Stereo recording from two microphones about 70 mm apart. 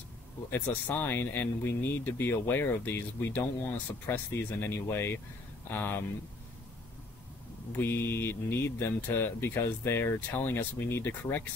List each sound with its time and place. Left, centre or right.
0.5 s speech: left
7.8 s speech: left